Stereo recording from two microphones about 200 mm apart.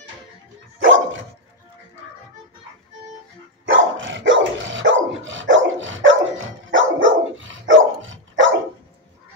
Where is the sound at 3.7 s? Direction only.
75° right (ahead or behind).